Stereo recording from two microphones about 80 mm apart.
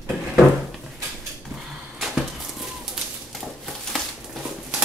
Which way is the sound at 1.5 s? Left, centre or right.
Centre.